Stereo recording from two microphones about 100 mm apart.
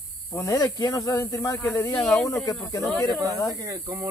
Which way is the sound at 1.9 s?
5° left (ahead or behind).